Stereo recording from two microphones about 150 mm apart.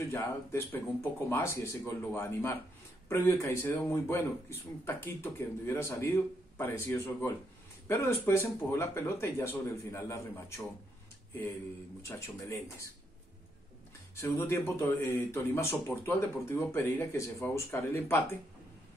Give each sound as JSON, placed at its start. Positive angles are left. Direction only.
{"t": 0.1, "sound": "speech", "side_deg": 15}
{"t": 12.0, "sound": "speech", "side_deg": 20}
{"t": 14.1, "sound": "speech", "side_deg": 15}